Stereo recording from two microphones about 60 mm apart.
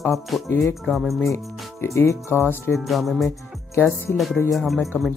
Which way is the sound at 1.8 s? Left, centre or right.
Left.